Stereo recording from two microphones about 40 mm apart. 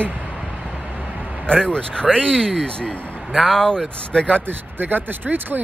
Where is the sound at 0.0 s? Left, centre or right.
Right.